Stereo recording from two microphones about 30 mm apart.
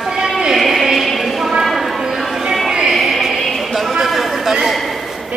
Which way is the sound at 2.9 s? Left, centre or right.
Centre.